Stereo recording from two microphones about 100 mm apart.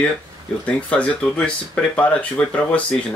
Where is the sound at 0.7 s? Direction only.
15° left (ahead or behind).